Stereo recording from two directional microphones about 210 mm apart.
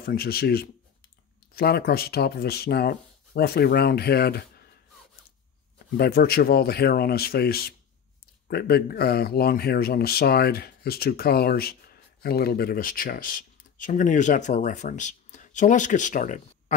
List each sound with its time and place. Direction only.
0.0 s speech: 45° left (ahead or behind)
5.9 s speech: 50° left (ahead or behind)